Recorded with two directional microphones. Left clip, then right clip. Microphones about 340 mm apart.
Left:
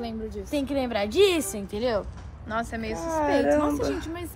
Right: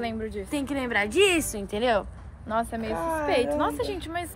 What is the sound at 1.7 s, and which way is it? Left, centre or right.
Speech, right.